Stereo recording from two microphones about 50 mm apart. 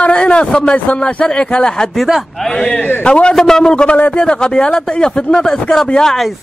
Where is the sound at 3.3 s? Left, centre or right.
Centre.